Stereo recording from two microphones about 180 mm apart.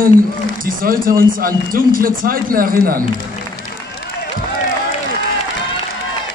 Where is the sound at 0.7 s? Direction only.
50° right (ahead or behind).